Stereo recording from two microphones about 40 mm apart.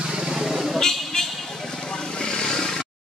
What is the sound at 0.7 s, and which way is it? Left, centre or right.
Vehicle, centre.